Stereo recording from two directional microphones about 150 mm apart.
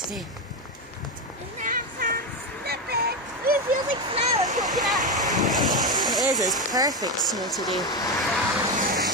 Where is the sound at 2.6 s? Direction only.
90° right.